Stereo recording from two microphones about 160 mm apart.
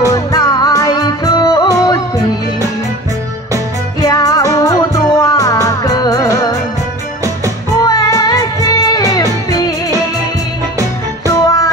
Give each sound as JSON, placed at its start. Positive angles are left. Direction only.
{"t": 0.0, "sound": "music", "side_deg": 20}
{"t": 4.0, "sound": "music", "side_deg": 20}
{"t": 7.8, "sound": "music", "side_deg": 20}
{"t": 11.2, "sound": "music", "side_deg": 20}